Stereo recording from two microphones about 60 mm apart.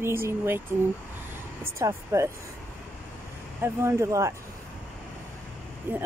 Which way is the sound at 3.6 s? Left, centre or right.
Right.